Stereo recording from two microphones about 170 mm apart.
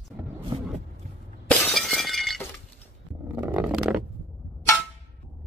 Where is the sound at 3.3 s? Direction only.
15° right (ahead or behind).